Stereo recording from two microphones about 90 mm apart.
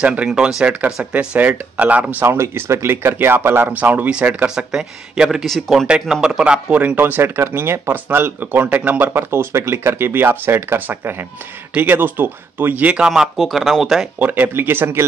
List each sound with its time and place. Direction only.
0.0 s speech: 15° right (ahead or behind)
2.2 s speech: 30° right (ahead or behind); by 13.1 s 15° right (ahead or behind)
13.1 s speech: centre (ahead or behind)
14.2 s speech: 20° right (ahead or behind)